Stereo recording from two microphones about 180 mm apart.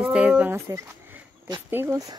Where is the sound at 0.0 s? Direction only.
5° right (ahead or behind).